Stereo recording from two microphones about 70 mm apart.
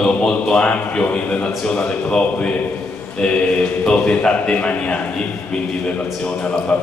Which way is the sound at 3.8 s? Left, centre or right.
Centre.